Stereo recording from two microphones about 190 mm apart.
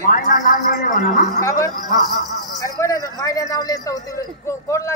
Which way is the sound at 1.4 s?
15° left (ahead or behind).